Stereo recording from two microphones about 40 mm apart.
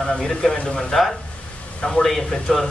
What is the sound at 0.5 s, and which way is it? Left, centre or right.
Speech, left.